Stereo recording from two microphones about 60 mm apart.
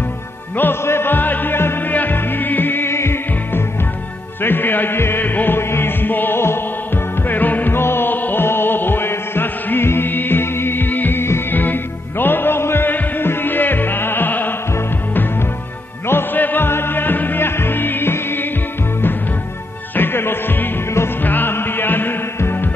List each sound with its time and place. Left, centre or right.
0.6 s music: left
4.4 s music: left
7.2 s music: left
16.1 s music: left
20.0 s music: left